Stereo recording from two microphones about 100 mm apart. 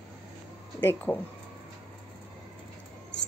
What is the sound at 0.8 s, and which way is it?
Speech, 20° left (ahead or behind).